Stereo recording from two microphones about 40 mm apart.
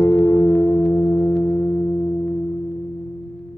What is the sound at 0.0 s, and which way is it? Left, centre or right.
Singing bowl, left.